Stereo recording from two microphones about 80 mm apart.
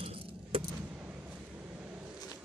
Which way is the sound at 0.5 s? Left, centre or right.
Right.